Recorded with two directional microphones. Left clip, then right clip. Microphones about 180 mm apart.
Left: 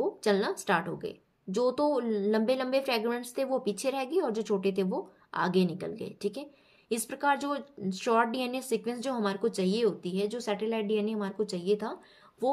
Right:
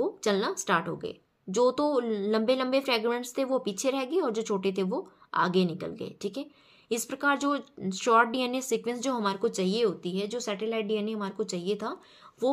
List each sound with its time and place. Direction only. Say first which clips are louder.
0.0 s a woman's voice: even; 25° right (ahead or behind)